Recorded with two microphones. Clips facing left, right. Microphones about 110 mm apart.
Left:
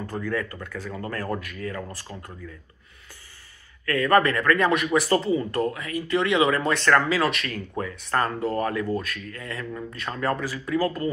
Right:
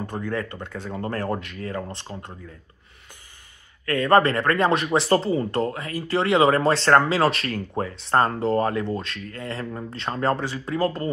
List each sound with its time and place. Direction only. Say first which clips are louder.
0.0 s speech: even; 20° right (ahead or behind)
3.8 s speech: right 2 dB; 25° right (ahead or behind)